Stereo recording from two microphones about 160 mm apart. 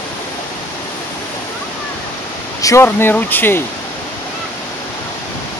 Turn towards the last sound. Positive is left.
turn(degrees=10)  # may be behind; listen again after turning